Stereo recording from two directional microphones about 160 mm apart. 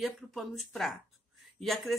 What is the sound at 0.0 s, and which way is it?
A woman's voice, centre (ahead or behind).